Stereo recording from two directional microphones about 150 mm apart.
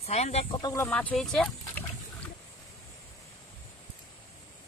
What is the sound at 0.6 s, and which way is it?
Speech, 25° left (ahead or behind).